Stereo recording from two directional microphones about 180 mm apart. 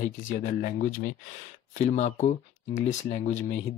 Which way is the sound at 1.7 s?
40° left (ahead or behind).